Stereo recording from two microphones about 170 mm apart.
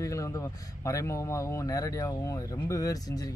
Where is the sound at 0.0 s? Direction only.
20° left (ahead or behind).